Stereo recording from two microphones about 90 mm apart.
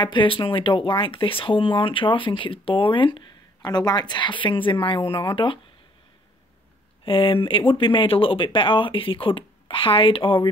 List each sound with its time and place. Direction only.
0.0 s speech: 65° left (ahead or behind)
7.1 s speech: 75° left (ahead or behind)